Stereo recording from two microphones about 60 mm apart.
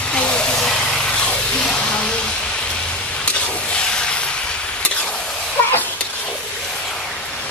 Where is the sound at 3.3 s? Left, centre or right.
Centre.